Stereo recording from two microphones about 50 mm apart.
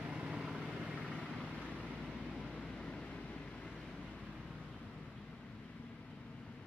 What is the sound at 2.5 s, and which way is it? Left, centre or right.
Vehicle, centre.